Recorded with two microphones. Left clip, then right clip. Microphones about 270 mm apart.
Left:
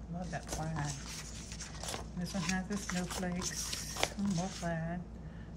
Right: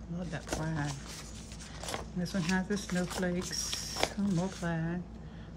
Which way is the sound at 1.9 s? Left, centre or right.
Centre.